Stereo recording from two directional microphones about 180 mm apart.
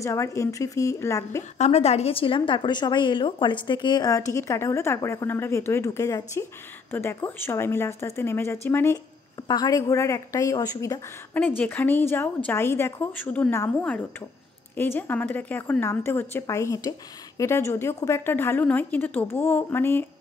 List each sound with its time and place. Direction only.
0.0 s a woman's voice: 15° left (ahead or behind)
1.6 s a woman's voice: 35° left (ahead or behind); by 11.0 s 20° left (ahead or behind)
11.3 s a woman's voice: 10° left (ahead or behind)